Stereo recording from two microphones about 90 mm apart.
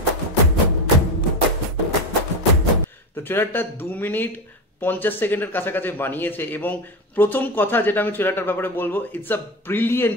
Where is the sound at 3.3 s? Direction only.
25° left (ahead or behind).